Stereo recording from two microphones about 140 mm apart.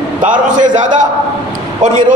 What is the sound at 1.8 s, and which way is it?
Speech, 65° right (ahead or behind).